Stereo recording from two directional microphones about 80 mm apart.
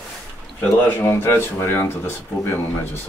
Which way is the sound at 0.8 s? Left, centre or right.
Left.